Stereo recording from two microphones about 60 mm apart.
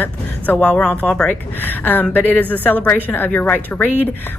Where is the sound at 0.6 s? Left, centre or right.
Centre.